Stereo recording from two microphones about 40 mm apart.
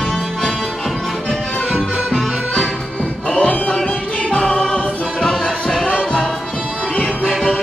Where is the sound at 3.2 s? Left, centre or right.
Left.